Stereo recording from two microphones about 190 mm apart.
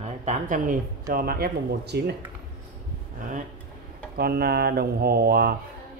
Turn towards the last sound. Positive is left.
turn(degrees=-55)  # may be behind; listen again after turning